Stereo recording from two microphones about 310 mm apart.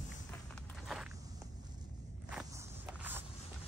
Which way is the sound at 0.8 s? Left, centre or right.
Centre.